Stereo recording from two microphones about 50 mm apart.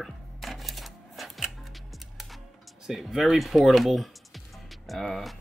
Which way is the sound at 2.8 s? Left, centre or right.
Centre.